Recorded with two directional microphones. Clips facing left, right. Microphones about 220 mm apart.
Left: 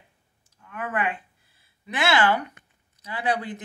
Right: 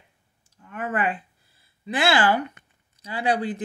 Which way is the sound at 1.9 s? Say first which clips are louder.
Right 1 dB; 30° right (ahead or behind).